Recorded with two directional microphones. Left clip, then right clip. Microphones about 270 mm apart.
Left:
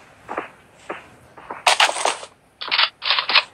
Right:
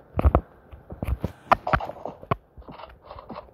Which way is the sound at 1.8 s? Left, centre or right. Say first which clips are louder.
Left 17 dB; left.